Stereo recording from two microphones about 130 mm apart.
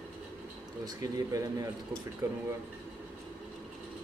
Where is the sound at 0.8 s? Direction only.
25° right (ahead or behind).